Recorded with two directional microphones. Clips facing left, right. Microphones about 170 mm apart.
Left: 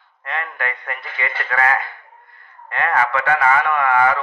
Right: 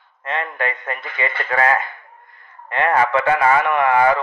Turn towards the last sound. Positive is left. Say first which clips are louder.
# right 2 dB
turn(degrees=-20)  # may be behind; listen again after turning